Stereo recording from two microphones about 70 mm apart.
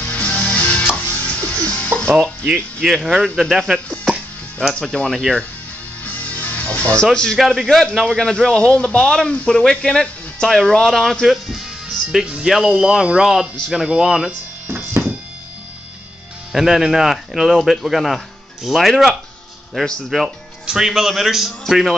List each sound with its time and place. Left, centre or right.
0.0 s music: left
2.0 s speech: centre
2.8 s speech: centre
4.7 s a man's voice: centre
6.0 s music: left
7.1 s a man's voice: centre
12.3 s speech: centre
16.5 s speech: centre
19.7 s a man's voice: centre
20.1 s speech: centre